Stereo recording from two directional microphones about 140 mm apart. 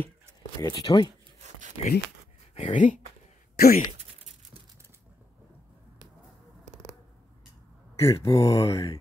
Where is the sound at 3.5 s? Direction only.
90° left.